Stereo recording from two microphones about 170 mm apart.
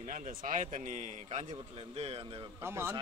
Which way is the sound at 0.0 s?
50° right (ahead or behind).